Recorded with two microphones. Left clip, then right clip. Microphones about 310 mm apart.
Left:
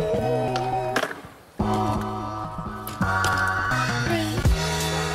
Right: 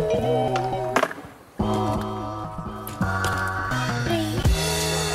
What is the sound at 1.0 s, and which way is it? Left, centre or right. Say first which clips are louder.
Music: right 7 dB; centre.